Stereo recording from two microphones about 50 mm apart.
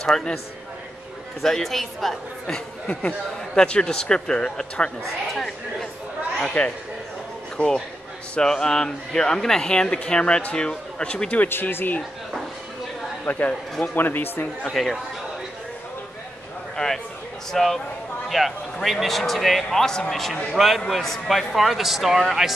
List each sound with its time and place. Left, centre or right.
0.0 s speech: centre
1.4 s speech: centre
2.9 s speech: left
3.5 s speech: centre
6.4 s a man's voice: centre
11.7 s speech: left
13.2 s speech: left
14.7 s speech: centre
16.7 s a man's voice: centre